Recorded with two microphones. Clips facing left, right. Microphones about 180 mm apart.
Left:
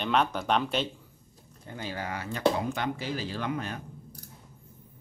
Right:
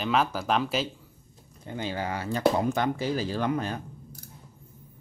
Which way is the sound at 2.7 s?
40° right (ahead or behind).